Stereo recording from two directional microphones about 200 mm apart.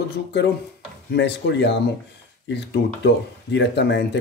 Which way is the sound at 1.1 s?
60° left (ahead or behind).